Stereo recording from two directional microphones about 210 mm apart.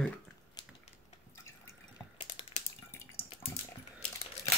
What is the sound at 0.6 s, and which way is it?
Typing, 20° left (ahead or behind).